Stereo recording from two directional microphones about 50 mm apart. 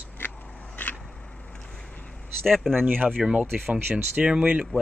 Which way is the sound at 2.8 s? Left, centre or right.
Right.